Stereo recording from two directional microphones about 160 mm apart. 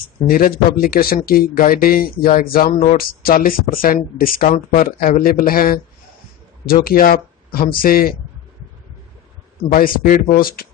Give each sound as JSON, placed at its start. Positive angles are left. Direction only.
{"t": 0.3, "sound": "speech", "side_deg": 65}
{"t": 9.7, "sound": "speech", "side_deg": 60}